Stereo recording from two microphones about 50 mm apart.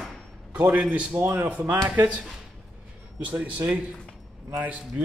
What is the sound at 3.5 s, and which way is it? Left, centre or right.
A man's voice, right.